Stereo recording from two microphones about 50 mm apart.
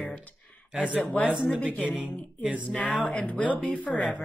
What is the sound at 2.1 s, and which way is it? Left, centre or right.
Speech, left.